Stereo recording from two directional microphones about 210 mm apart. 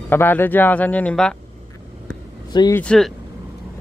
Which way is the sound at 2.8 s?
5° left (ahead or behind).